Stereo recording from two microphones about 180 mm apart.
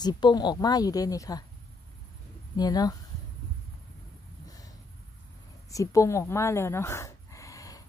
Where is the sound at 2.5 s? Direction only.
20° left (ahead or behind).